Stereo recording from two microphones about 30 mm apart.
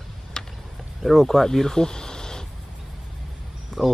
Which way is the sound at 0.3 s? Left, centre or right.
Centre.